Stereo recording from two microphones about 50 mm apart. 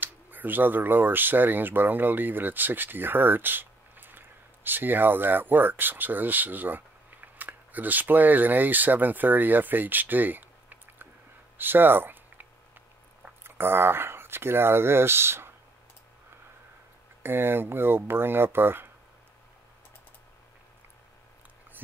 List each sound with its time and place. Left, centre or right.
0.0 s speech: right
11.5 s a sound: right
13.4 s speech: right
17.2 s speech: right